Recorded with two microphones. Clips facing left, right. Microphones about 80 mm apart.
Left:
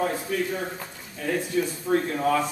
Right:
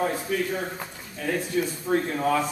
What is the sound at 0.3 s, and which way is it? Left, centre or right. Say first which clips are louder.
Speech: even; centre.